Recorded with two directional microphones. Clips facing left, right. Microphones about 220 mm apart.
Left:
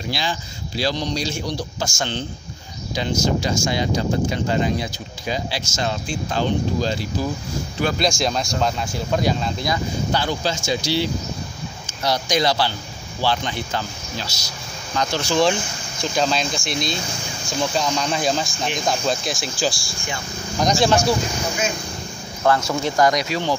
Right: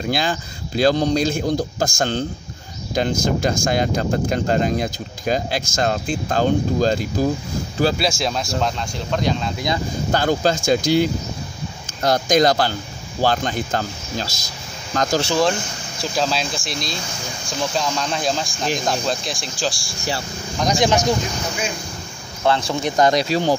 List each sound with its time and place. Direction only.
0.1 s speech: 50° right (ahead or behind)
8.0 s speech: 5° right (ahead or behind)
10.1 s speech: 45° right (ahead or behind)
15.2 s speech: 5° right (ahead or behind)
20.8 s speech: 15° right (ahead or behind)
22.7 s speech: 15° right (ahead or behind); by 23.5 s 35° right (ahead or behind)